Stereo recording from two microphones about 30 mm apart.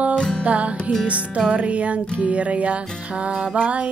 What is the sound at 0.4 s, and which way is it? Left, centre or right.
Music, right.